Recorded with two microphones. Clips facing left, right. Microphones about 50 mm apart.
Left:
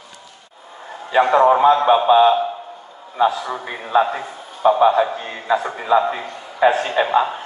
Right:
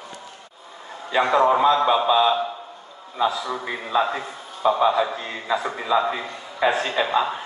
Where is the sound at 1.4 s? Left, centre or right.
Left.